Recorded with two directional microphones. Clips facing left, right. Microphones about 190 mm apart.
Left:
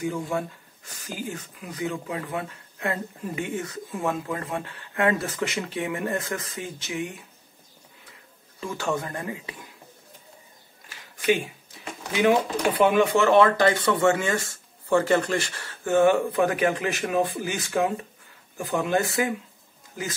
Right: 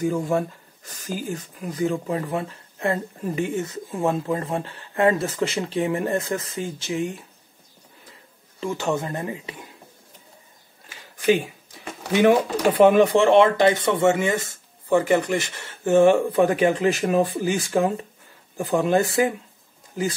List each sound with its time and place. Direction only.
0.0 s speech: 40° right (ahead or behind)
8.5 s speech: 25° right (ahead or behind)
12.1 s speech: 40° right (ahead or behind)